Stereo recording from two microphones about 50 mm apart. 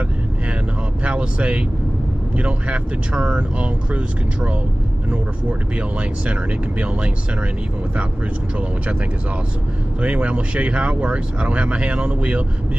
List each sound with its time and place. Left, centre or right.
1.0 s speech: right
10.0 s speech: right